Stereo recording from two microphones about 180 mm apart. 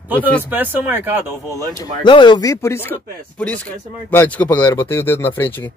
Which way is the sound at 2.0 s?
25° left (ahead or behind).